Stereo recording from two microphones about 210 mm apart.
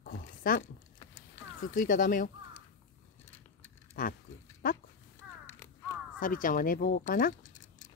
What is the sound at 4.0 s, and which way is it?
Speech, 40° left (ahead or behind).